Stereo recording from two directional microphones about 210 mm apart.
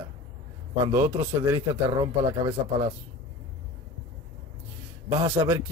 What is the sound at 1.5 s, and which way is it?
Speech, 20° right (ahead or behind).